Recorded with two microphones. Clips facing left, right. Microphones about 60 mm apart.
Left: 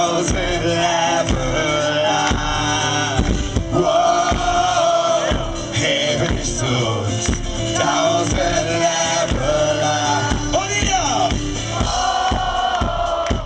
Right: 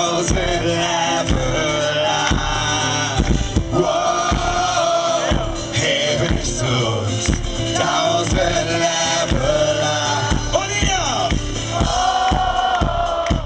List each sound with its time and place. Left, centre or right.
0.0 s music: centre
3.7 s music: centre
11.9 s music: centre